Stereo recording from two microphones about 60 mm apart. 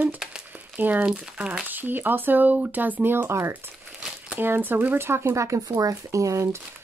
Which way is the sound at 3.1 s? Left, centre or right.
Right.